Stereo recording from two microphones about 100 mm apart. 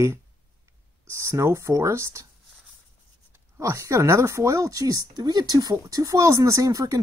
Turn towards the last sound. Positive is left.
turn(degrees=-35)  # may be behind; listen again after turning